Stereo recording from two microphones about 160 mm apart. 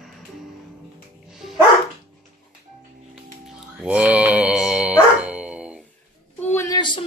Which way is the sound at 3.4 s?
5° right (ahead or behind).